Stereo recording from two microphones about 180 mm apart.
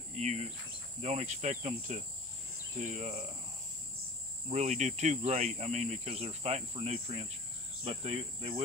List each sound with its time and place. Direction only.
0.1 s cricket: 40° right (ahead or behind)
1.0 s speech: 40° right (ahead or behind)
4.5 s speech: 40° right (ahead or behind)